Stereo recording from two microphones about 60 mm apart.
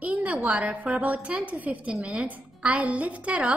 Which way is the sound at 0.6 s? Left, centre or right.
Right.